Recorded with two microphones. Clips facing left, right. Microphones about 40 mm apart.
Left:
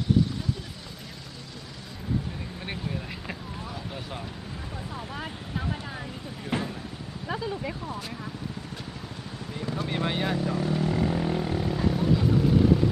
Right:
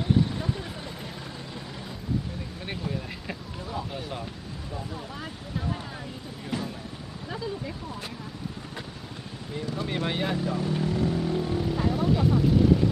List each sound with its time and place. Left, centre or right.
2.6 s speech: centre
5.1 s speech: centre
6.5 s a sound: left
7.2 s speech: left
9.8 s speech: centre
10.9 s speech: left
11.7 s vehicle: centre